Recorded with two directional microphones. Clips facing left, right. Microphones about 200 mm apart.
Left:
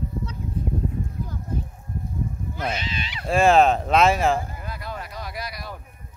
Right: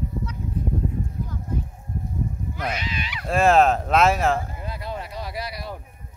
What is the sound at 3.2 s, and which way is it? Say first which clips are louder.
Speech: left 1 dB; centre (ahead or behind).